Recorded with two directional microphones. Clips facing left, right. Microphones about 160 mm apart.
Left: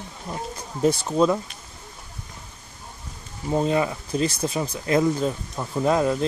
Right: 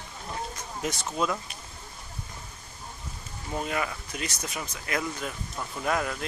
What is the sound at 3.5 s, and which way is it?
Speech, 30° left (ahead or behind).